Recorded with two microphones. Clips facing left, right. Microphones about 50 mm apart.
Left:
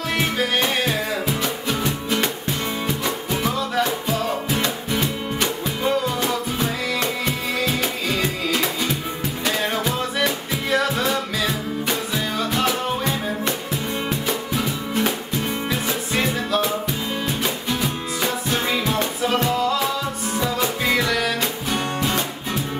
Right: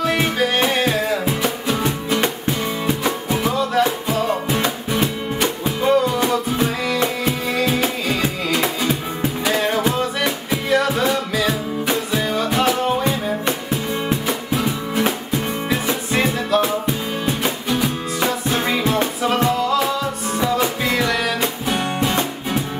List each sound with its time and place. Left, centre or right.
0.0 s music: centre
2.1 s music: right
3.4 s music: centre